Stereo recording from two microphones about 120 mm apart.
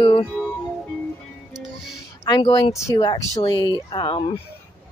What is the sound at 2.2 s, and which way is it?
Speech, 40° left (ahead or behind).